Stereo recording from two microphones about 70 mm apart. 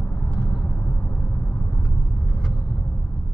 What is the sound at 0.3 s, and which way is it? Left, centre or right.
Vehicle, centre.